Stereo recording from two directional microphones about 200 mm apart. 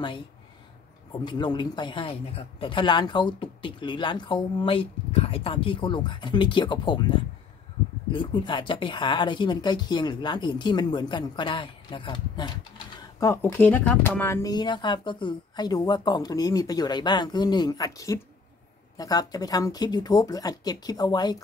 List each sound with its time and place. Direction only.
1.1 s speech: 20° left (ahead or behind)